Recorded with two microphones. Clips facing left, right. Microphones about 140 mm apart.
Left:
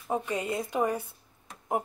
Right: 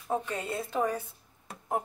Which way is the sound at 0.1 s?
15° left (ahead or behind).